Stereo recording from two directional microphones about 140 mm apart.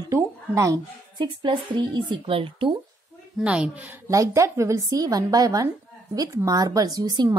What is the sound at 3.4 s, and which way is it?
Speech, 5° right (ahead or behind).